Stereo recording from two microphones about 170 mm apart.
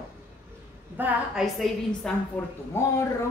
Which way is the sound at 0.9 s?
5° right (ahead or behind).